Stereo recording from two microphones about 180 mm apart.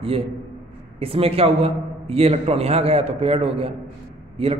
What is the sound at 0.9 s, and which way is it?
A man's voice, 30° right (ahead or behind).